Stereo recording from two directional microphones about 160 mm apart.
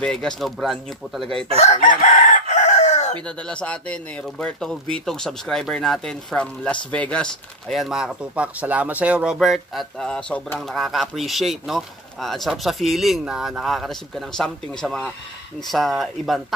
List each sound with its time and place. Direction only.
0.0 s speech: 5° left (ahead or behind)
1.6 s chicken: 50° left (ahead or behind)
3.3 s speech: 5° left (ahead or behind)